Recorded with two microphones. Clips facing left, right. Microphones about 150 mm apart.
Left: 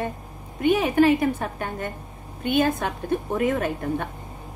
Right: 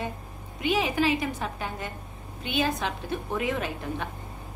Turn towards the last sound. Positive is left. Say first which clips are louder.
# left 6 dB
turn(degrees=50)  # may be behind; listen again after turning